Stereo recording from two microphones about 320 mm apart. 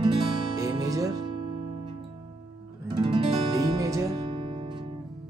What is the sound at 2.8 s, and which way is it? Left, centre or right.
Music, centre.